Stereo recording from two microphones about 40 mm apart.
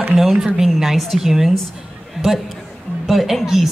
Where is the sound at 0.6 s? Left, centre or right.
Centre.